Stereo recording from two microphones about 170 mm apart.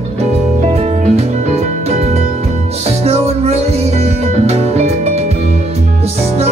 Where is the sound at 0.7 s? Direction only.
40° right (ahead or behind).